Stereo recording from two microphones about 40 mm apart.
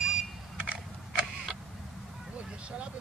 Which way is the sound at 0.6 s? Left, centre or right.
Right.